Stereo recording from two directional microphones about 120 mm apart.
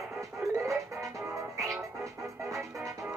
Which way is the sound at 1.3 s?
25° right (ahead or behind).